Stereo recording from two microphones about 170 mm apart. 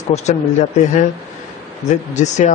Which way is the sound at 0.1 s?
40° left (ahead or behind).